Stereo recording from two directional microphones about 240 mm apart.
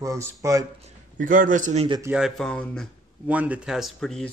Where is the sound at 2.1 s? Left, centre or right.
Centre.